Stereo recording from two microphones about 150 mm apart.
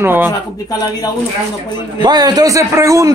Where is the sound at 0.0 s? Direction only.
15° right (ahead or behind).